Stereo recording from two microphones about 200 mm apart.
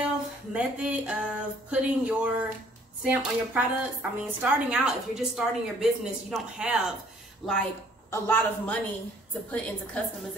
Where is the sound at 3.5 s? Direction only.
10° right (ahead or behind); by 8.8 s 10° left (ahead or behind).